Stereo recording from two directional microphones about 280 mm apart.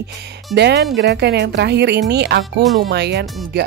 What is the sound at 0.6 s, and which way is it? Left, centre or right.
Speech, right.